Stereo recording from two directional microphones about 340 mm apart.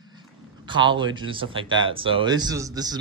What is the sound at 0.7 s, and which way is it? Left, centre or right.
Speech, centre.